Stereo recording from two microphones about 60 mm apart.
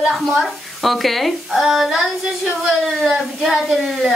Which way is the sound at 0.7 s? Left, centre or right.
Centre.